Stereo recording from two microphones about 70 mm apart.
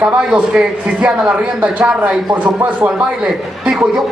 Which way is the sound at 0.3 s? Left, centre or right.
Centre.